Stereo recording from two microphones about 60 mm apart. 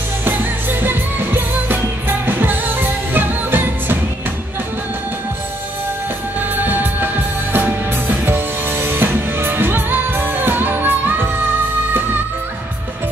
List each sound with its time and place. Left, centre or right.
0.2 s music: right
6.5 s music: right